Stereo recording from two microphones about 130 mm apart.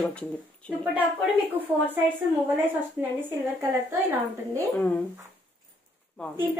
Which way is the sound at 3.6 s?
20° right (ahead or behind).